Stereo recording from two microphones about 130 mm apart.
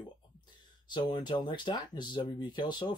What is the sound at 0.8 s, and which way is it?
Speech, 35° left (ahead or behind).